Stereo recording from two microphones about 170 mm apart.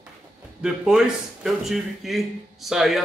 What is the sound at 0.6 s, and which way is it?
Speech, 5° right (ahead or behind).